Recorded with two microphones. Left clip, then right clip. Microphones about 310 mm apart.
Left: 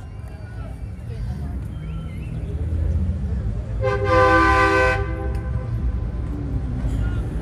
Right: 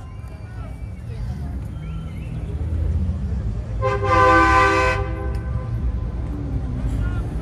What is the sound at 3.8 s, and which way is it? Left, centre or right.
Toot, right.